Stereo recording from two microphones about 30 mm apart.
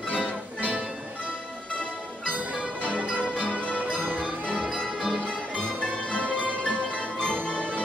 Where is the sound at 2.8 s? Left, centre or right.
Right.